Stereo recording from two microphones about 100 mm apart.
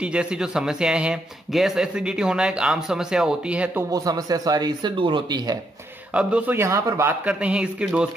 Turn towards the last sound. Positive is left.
turn(degrees=-10)  # may be behind; listen again after turning